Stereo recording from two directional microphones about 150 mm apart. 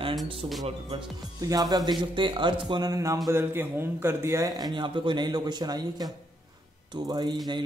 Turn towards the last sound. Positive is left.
turn(degrees=-25)  # may be behind; listen again after turning